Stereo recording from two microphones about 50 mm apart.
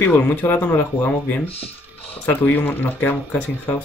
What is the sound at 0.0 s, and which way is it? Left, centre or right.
Speech, left.